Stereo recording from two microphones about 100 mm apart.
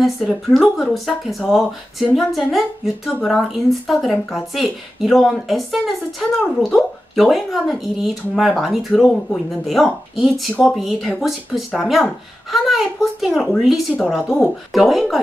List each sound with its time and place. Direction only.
0.0 s speech: 5° left (ahead or behind)